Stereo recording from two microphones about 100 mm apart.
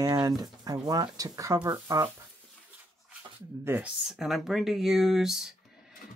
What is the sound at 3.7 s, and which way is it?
Speech, 25° right (ahead or behind).